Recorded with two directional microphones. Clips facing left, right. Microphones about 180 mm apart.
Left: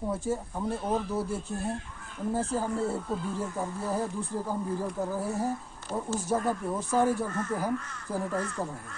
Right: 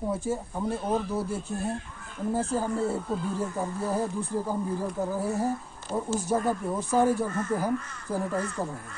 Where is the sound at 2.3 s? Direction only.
Centre (ahead or behind).